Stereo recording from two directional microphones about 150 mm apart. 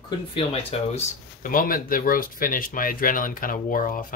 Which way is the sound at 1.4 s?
70° left (ahead or behind).